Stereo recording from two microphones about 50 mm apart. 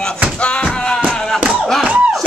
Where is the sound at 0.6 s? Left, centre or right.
Centre.